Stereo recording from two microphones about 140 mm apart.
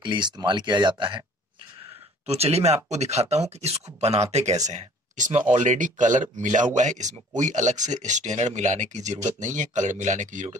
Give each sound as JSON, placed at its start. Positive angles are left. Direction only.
{"t": 0.0, "sound": "speech", "side_deg": -35}
{"t": 1.8, "sound": "speech", "side_deg": -45}